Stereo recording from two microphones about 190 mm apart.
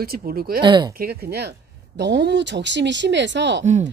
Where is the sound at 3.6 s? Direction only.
40° right (ahead or behind).